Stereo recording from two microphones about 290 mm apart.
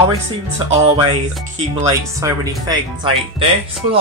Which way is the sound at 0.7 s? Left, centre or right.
Centre.